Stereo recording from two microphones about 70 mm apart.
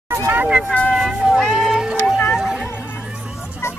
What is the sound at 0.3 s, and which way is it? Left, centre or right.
Speech, centre.